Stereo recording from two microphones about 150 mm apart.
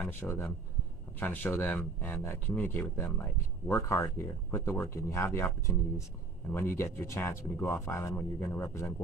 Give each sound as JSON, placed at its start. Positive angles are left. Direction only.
{"t": 0.0, "sound": "speech", "side_deg": 10}